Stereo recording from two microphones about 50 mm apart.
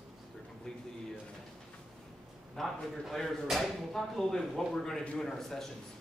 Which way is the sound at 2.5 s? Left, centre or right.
Centre.